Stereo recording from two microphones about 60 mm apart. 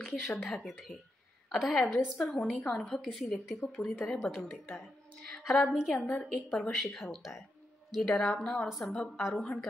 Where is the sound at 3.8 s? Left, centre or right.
Centre.